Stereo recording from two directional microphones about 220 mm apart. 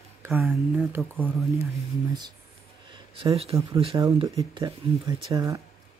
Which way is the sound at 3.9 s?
15° right (ahead or behind).